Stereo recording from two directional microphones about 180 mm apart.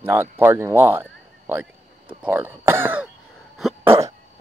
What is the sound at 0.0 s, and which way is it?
Speech, 10° right (ahead or behind).